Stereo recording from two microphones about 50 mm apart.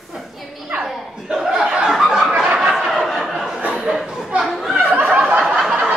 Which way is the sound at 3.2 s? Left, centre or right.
Centre.